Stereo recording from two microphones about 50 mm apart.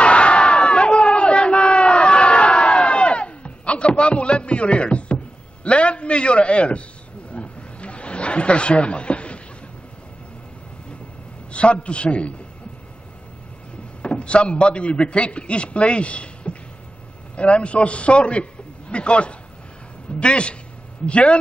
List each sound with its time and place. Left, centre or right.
0.0 s crowd: left
7.3 s a sound: left
11.5 s a man's voice: left
14.0 s a man's voice: left